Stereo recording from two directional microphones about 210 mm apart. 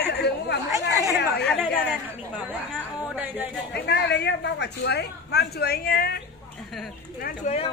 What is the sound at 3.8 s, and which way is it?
Speech, 50° left (ahead or behind).